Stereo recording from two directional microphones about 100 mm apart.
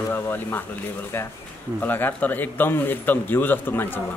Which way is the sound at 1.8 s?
20° left (ahead or behind).